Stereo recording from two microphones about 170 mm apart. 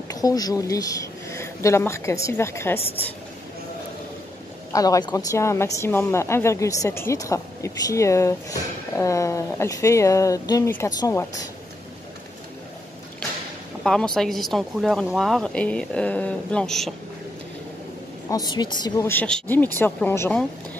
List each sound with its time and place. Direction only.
0.1 s speech: 20° left (ahead or behind)
4.7 s a woman's voice: 20° left (ahead or behind)
13.8 s speech: 5° left (ahead or behind)
18.3 s a woman's voice: 25° left (ahead or behind)